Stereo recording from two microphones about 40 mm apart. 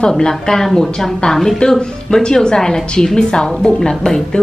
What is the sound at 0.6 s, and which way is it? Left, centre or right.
A woman's voice, centre.